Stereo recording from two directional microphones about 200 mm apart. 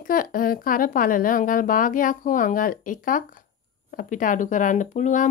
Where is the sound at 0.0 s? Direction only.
45° left (ahead or behind).